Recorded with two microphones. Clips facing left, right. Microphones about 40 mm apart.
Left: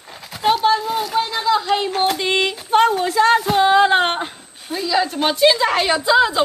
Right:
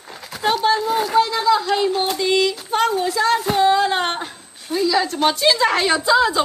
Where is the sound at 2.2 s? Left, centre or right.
Left.